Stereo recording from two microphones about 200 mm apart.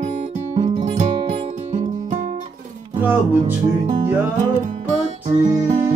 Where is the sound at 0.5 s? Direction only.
35° right (ahead or behind).